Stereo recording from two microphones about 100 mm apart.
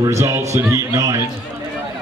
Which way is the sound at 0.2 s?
30° right (ahead or behind).